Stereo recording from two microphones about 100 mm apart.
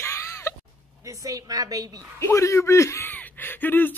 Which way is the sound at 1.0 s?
30° right (ahead or behind).